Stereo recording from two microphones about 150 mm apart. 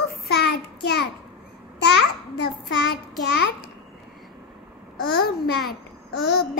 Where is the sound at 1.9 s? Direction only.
90° left.